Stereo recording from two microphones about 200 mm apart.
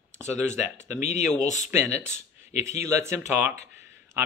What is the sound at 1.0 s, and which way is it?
Speech, 35° left (ahead or behind).